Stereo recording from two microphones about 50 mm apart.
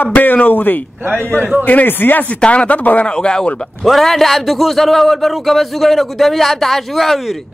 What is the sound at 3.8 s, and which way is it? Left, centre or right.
A man's voice, centre.